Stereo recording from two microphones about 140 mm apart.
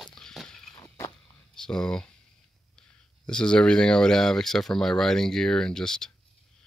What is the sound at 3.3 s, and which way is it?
Speech, 5° left (ahead or behind).